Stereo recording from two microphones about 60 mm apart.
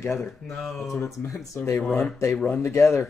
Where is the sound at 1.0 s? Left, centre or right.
Left.